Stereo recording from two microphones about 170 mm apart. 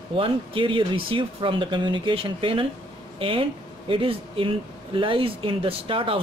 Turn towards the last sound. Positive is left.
turn(degrees=-30)  # may be behind; listen again after turning